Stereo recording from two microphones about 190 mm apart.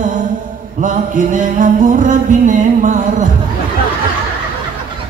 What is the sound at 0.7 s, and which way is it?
Music, 40° right (ahead or behind).